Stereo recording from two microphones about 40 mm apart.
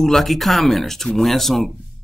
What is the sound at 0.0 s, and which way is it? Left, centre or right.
Speech, centre.